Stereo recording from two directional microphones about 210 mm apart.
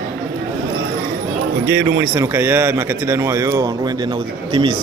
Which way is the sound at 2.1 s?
10° right (ahead or behind).